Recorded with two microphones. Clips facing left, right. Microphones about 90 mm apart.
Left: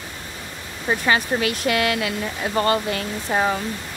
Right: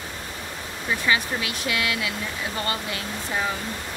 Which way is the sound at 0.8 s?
50° left (ahead or behind).